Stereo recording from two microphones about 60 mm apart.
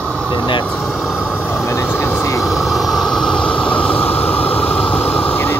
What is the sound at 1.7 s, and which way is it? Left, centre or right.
Vehicle, left.